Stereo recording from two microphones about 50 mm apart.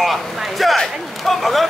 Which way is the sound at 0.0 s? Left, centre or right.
Centre.